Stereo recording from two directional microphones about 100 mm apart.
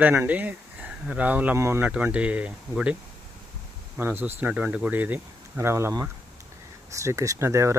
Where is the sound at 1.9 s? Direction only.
15° right (ahead or behind).